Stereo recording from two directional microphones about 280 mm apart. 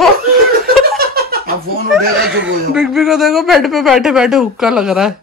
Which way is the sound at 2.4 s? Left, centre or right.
Centre.